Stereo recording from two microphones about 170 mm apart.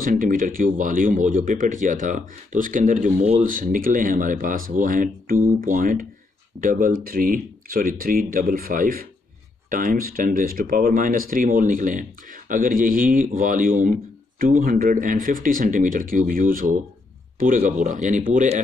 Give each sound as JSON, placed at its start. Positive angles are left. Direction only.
{"t": 0.0, "sound": "speech", "side_deg": -55}